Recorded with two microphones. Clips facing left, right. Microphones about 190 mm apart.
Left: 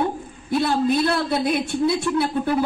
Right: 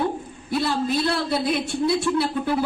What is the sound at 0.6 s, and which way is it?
A woman's voice, 55° left (ahead or behind).